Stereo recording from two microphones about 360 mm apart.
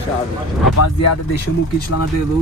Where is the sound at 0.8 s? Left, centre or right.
Left.